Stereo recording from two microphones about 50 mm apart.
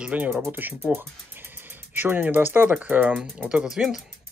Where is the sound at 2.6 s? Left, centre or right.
Right.